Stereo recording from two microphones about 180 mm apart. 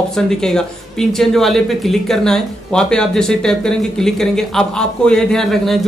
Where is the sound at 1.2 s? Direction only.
Centre (ahead or behind).